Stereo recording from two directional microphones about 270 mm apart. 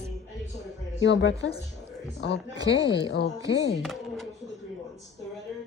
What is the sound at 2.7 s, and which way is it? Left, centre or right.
A woman's voice, left.